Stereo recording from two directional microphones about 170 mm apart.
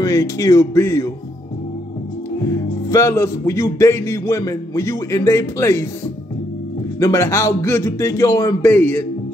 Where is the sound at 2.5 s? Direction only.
20° left (ahead or behind).